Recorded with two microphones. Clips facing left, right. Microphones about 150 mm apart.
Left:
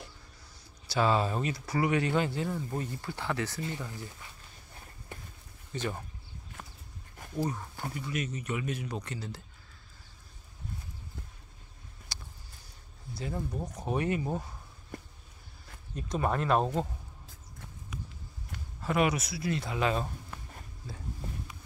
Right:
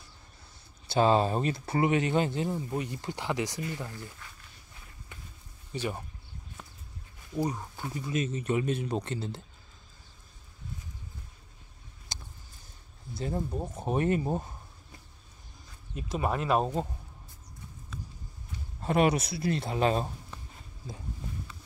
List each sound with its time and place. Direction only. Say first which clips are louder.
0.8 s speech: right 4 dB; 30° right (ahead or behind)
5.7 s speech: right 1 dB; 15° right (ahead or behind)
7.3 s speech: right 2 dB; 15° right (ahead or behind)
7.9 s speech: right 5 dB; 25° right (ahead or behind)
12.1 s a sound: right 2 dB; 20° right (ahead or behind)
13.2 s speech: right 3 dB; 30° right (ahead or behind)
13.9 s speech: right 3 dB; 40° right (ahead or behind)
14.2 s speech: right 3 dB; 25° right (ahead or behind)
15.9 s speech: even; 10° right (ahead or behind)
18.8 s speech: right 3 dB; 30° right (ahead or behind)